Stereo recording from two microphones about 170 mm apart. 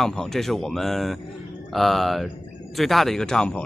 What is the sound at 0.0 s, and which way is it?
Speech, centre (ahead or behind).